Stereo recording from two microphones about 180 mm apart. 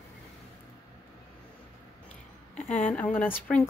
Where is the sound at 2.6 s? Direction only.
5° left (ahead or behind).